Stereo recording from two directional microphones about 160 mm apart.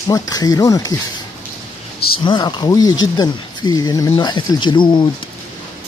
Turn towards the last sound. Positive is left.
turn(degrees=30)  # may be behind; listen again after turning